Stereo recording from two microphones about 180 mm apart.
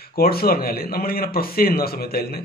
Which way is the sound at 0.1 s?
60° left (ahead or behind).